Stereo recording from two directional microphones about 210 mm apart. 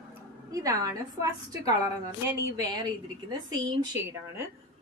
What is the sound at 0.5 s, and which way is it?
Speech, 15° right (ahead or behind).